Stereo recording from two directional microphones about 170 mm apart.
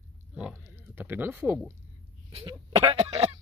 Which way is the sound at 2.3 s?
35° right (ahead or behind).